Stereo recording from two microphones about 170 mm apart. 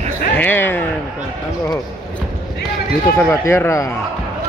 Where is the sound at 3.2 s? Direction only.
15° left (ahead or behind).